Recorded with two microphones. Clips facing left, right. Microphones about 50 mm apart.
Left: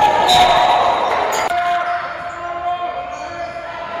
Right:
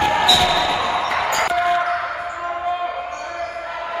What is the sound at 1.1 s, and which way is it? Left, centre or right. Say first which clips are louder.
Music: left 3 dB; right.